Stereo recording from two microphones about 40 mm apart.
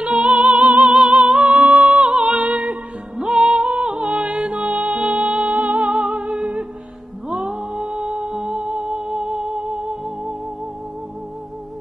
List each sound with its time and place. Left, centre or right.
0.0 s music: right
0.9 s music: right
1.5 s music: right; by 4.6 s centre
4.6 s music: right; by 8.5 s centre
8.5 s music: right